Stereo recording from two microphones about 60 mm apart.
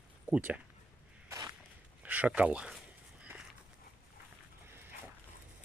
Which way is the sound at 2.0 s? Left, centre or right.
Right.